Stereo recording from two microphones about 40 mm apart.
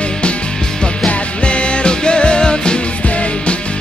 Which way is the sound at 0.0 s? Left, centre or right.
Left.